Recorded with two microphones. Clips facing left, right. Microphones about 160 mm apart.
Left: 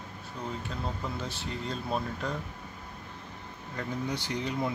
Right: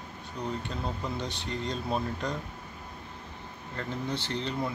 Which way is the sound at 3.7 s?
10° left (ahead or behind).